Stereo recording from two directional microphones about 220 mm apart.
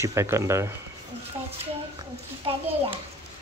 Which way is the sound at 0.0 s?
15° right (ahead or behind).